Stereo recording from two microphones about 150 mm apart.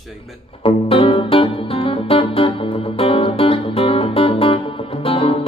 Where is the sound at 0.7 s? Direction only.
35° left (ahead or behind).